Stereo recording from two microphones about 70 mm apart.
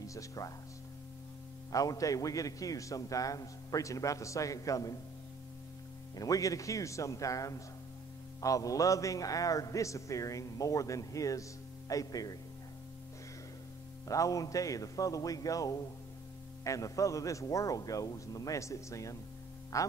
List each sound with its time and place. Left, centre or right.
0.0 s speech: left
1.7 s a man's voice: left
6.1 s a man's voice: left
14.0 s a man's voice: left